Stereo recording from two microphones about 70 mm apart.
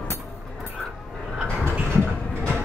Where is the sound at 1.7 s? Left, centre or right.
Right.